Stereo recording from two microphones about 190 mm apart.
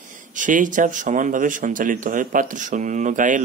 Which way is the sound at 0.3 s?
45° right (ahead or behind).